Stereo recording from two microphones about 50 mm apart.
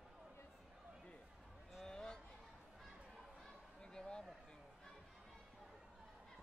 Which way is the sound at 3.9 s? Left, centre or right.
Centre.